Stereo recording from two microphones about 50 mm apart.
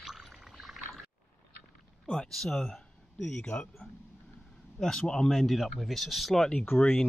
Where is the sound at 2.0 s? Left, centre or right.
Centre.